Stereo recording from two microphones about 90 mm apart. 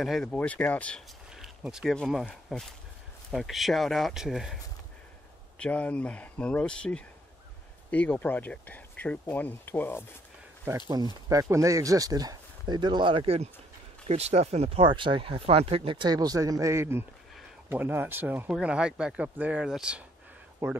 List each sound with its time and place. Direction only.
0.0 s speech: 5° left (ahead or behind)
0.4 s speech: 20° left (ahead or behind)
1.3 s a sound: 5° right (ahead or behind)
2.5 s speech: 5° left (ahead or behind)
5.6 s speech: 15° left (ahead or behind)
10.9 s speech: 45° right (ahead or behind); by 13.4 s 85° right
14.7 s speech: 80° right
16.1 s a man's voice: 45° right (ahead or behind); by 18.5 s 20° right (ahead or behind)
18.5 s speech: 10° right (ahead or behind)
20.6 s speech: 30° right (ahead or behind)